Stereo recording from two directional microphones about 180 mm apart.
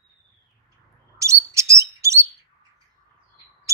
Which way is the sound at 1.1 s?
15° right (ahead or behind).